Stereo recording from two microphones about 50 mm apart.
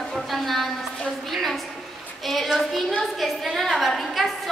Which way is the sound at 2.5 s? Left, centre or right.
Centre.